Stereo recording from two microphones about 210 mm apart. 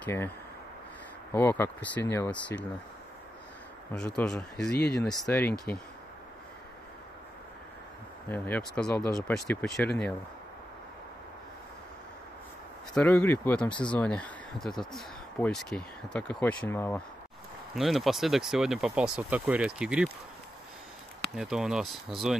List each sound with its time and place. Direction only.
0.0 s speech: 10° left (ahead or behind)
1.3 s speech: 10° left (ahead or behind)
4.2 s speech: centre (ahead or behind)
4.7 s speech: 50° left (ahead or behind)
5.3 s speech: 10° left (ahead or behind)
8.3 s speech: 5° left (ahead or behind)
12.9 s speech: 5° left (ahead or behind)
17.7 s speech: centre (ahead or behind)
21.4 s speech: 5° right (ahead or behind)